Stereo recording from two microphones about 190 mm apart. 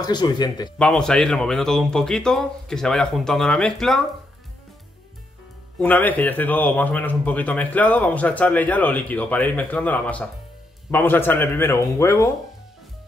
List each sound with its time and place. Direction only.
0.0 s speech: 20° left (ahead or behind)
0.7 s speech: 5° left (ahead or behind)
5.8 s speech: 10° left (ahead or behind)